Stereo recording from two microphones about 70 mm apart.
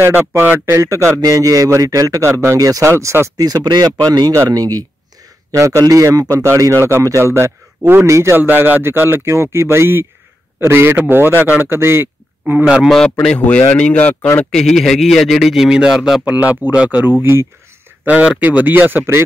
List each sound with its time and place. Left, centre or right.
0.0 s speech: right
0.7 s a man's voice: right
2.8 s a man's voice: right
3.4 s speech: right
5.5 s a man's voice: right
6.3 s a man's voice: right
8.5 s speech: right
12.8 s speech: centre
14.5 s speech: centre
16.3 s speech: centre
17.0 s speech: right
18.0 s speech: right